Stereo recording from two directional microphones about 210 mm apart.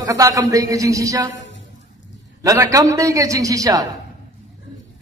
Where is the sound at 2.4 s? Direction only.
15° right (ahead or behind).